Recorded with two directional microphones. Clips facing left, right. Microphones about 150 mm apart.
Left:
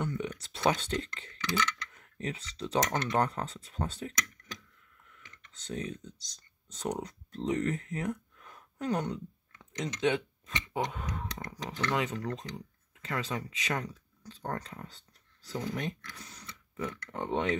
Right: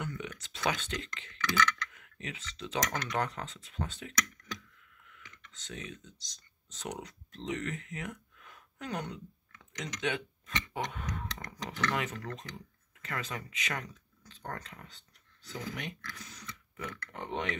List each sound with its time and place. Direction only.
0.0 s a sound: 30° left (ahead or behind)
2.8 s speech: 25° left (ahead or behind)
5.4 s speech: 35° left (ahead or behind)